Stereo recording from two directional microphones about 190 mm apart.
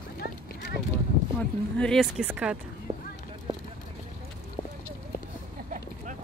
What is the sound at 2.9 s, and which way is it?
Speech, 35° right (ahead or behind).